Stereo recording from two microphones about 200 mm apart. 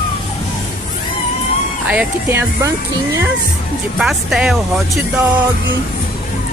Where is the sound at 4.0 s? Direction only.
Centre (ahead or behind).